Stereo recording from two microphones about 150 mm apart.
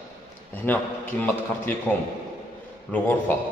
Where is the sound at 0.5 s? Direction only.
10° left (ahead or behind).